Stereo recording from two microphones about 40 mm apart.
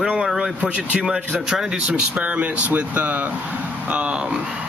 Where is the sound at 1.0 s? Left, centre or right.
Centre.